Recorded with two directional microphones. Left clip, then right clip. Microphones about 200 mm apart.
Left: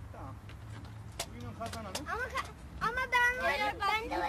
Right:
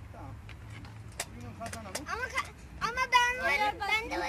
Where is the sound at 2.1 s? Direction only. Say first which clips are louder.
Right 3 dB; 40° left (ahead or behind).